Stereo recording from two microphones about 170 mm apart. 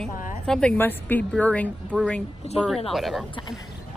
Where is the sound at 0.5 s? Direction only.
5° left (ahead or behind).